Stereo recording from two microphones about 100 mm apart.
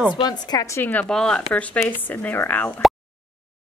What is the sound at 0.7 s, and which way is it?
Speech, 20° left (ahead or behind).